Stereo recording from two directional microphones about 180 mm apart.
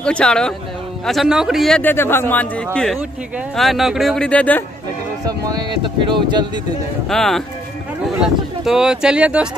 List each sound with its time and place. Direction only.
0.0 s speech: 5° left (ahead or behind)
5.2 s speech: 20° right (ahead or behind)
7.1 s speech: centre (ahead or behind)